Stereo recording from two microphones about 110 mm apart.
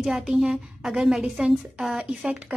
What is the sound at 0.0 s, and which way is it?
A woman's voice, 5° right (ahead or behind).